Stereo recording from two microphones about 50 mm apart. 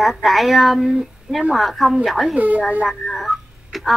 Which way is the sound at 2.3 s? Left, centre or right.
Right.